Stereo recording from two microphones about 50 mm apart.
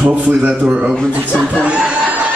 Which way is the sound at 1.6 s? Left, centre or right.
Right.